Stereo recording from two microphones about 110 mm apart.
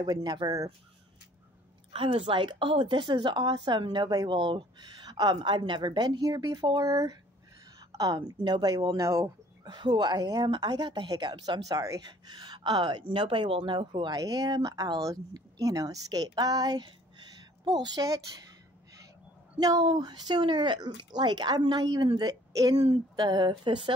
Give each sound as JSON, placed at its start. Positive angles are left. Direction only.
{"t": 0.0, "sound": "speech", "side_deg": -40}
{"t": 1.9, "sound": "a woman's voice", "side_deg": -55}
{"t": 9.7, "sound": "speech", "side_deg": -40}
{"t": 19.6, "sound": "a woman's voice", "side_deg": -35}